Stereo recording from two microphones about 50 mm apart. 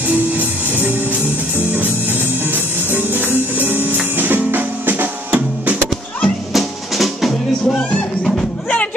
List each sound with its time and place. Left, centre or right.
0.4 s music: right
6.2 s music: centre